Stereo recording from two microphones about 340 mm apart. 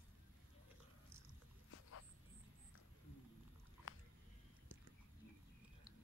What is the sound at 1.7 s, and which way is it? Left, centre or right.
Dog, left.